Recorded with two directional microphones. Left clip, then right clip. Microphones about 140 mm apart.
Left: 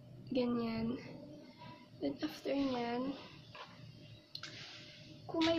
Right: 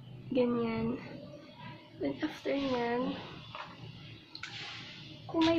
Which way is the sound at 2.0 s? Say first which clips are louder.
Right 4 dB; 15° left (ahead or behind).